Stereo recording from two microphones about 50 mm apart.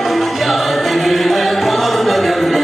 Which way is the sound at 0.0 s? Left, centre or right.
Centre.